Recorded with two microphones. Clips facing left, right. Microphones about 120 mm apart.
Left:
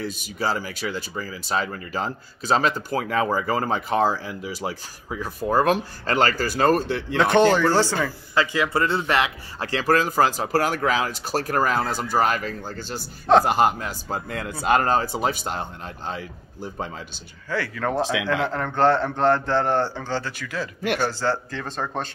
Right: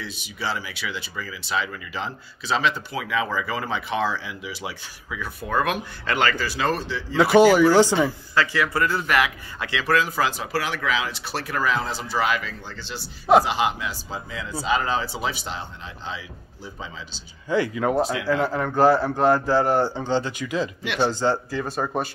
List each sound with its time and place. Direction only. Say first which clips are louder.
0.0 s speech: left 4 dB; 45° left (ahead or behind)
7.2 s speech: right 3 dB; 5° right (ahead or behind)
8.4 s speech: left 1 dB; 25° left (ahead or behind); by 17.2 s 55° left (ahead or behind)
17.5 s speech: right 4 dB; 15° right (ahead or behind)
18.4 s a man's voice: right 3 dB; 5° right (ahead or behind)